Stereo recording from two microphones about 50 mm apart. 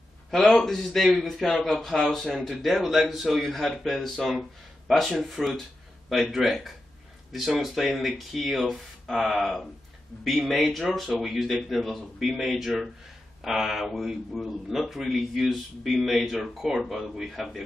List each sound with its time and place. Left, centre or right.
0.6 s a man's voice: centre